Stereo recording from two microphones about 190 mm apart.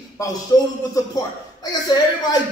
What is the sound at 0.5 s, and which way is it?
A man's voice, 20° left (ahead or behind).